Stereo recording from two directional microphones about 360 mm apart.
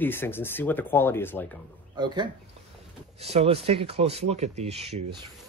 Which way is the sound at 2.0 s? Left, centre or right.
Centre.